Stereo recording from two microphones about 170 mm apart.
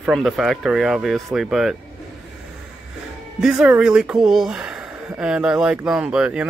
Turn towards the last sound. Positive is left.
turn(degrees=-5)  # may be behind; listen again after turning